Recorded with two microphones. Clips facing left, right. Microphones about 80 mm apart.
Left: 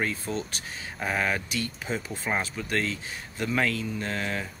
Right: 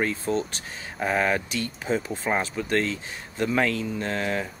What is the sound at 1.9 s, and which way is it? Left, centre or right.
Speech, right.